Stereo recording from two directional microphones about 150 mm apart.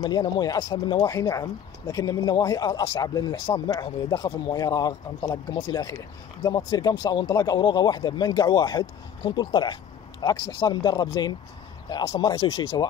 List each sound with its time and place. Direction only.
0.0 s speech: 25° left (ahead or behind)